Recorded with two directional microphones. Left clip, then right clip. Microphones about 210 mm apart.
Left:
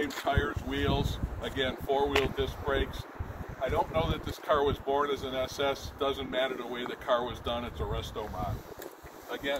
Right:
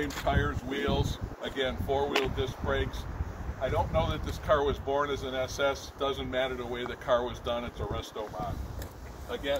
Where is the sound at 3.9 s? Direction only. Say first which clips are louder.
Right 1 dB; 30° right (ahead or behind).